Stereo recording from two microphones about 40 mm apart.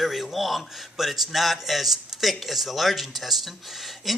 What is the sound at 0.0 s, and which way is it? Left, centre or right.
A man's voice, centre.